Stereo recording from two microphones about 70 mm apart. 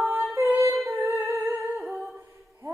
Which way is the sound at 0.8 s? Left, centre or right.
Right.